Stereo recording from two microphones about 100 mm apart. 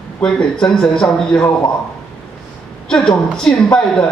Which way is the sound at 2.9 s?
5° left (ahead or behind).